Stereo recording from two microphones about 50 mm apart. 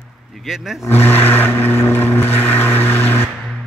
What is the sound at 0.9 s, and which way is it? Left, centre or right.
Vehicle, left.